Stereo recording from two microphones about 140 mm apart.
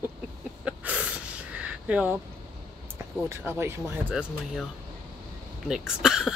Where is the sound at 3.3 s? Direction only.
15° right (ahead or behind).